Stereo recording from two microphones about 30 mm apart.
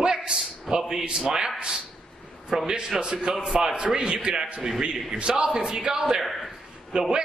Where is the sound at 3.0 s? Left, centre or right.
Right.